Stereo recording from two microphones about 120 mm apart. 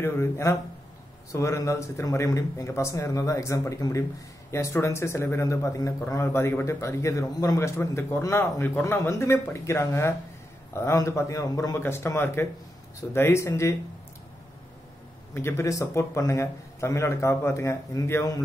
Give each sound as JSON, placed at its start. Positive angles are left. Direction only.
{"t": 0.0, "sound": "a man's voice", "side_deg": 20}
{"t": 15.3, "sound": "a man's voice", "side_deg": 20}